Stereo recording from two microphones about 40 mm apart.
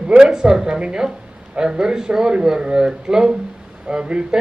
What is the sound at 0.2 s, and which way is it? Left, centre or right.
Speech, centre.